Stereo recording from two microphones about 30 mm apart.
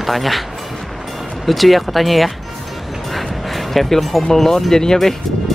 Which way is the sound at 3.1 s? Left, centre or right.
Centre.